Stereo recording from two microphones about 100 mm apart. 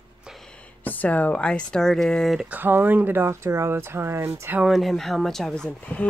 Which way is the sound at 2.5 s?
20° right (ahead or behind).